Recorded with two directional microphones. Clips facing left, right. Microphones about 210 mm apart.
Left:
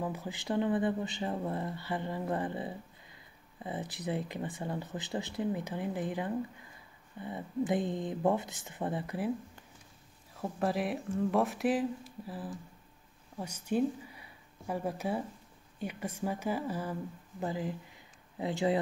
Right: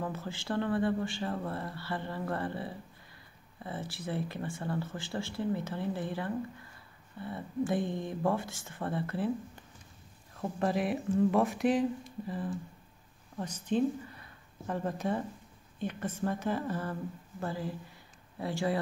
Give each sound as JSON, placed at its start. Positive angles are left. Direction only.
{"t": 0.0, "sound": "speech", "side_deg": 15}
{"t": 10.3, "sound": "speech", "side_deg": 5}